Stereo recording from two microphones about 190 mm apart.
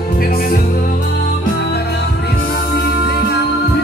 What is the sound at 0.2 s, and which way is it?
Music, 50° left (ahead or behind).